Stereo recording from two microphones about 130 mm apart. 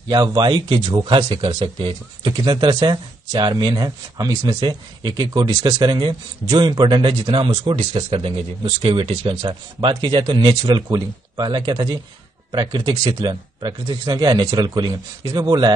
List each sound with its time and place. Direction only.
0.1 s speech: 35° right (ahead or behind)